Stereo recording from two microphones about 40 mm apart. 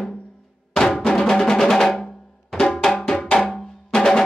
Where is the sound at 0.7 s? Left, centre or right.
Centre.